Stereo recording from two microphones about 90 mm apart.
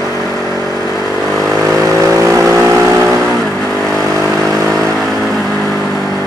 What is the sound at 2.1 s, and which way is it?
Vehicle, 35° right (ahead or behind).